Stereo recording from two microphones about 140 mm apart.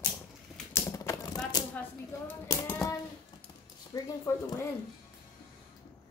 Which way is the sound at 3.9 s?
25° left (ahead or behind).